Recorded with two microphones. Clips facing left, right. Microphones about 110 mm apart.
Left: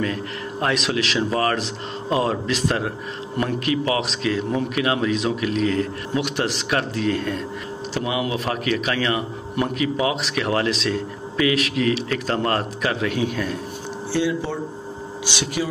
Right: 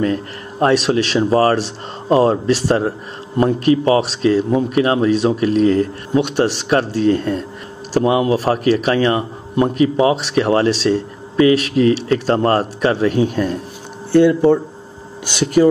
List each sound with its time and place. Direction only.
0.0 s a man's voice: 35° right (ahead or behind)
14.1 s speech: 55° right (ahead or behind)